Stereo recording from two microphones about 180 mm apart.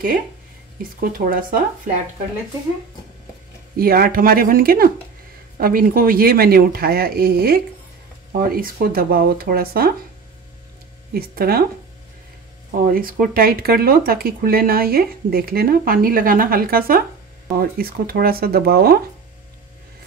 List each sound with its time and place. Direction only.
1.0 s speech: 50° right (ahead or behind)
3.7 s speech: 55° right (ahead or behind)
11.1 s speech: 55° right (ahead or behind)
12.8 s speech: 50° right (ahead or behind)